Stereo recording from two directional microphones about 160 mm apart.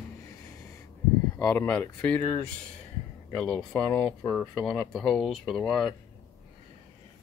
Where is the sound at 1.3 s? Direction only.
15° left (ahead or behind).